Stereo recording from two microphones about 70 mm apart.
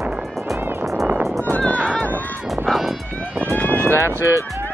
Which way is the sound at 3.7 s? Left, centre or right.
Right.